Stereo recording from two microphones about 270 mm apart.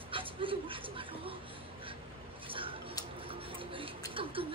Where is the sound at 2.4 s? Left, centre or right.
Centre.